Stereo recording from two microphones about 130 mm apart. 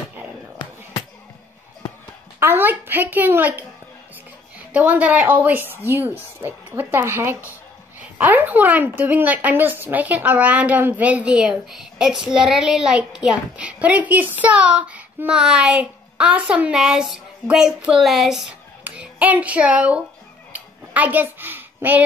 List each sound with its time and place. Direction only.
2.4 s a woman's voice: 15° right (ahead or behind)
4.7 s a woman's voice: 10° right (ahead or behind)
20.5 s a sound: 10° right (ahead or behind)